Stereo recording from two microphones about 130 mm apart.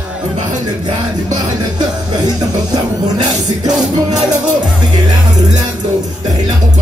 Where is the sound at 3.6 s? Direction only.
30° right (ahead or behind).